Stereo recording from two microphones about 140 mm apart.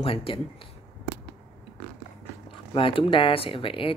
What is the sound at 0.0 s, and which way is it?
Speech, 40° left (ahead or behind).